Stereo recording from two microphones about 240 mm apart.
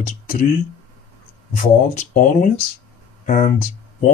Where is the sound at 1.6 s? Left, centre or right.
Left.